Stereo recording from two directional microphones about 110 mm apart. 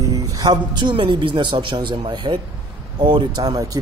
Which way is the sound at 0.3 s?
40° right (ahead or behind).